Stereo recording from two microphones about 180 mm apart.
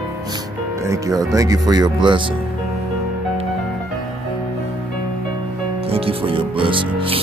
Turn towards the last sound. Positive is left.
turn(degrees=-30)  # may be behind; listen again after turning